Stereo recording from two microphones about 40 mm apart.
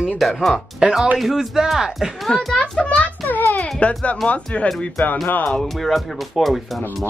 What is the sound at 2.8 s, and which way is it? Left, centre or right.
Speech, centre.